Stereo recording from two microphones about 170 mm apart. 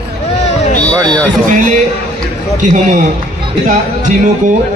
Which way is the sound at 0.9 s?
25° right (ahead or behind).